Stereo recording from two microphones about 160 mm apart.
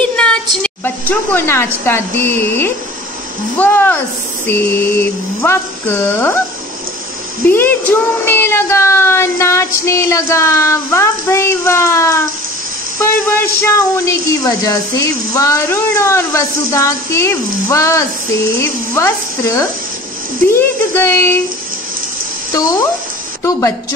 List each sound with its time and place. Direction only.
0.0 s a woman's voice: 5° left (ahead or behind)
7.4 s speech: 10° left (ahead or behind)